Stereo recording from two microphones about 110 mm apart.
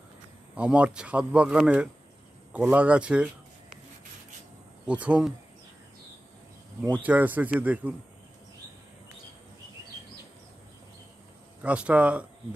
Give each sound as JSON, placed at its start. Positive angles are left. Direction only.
{"t": 0.6, "sound": "speech", "side_deg": -10}
{"t": 4.8, "sound": "speech", "side_deg": -10}
{"t": 7.0, "sound": "speech", "side_deg": -15}
{"t": 11.6, "sound": "speech", "side_deg": -10}